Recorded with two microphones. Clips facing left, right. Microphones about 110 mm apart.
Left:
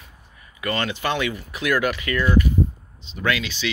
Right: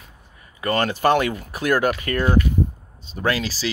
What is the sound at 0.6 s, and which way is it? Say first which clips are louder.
Speech: right 4 dB; 40° right (ahead or behind).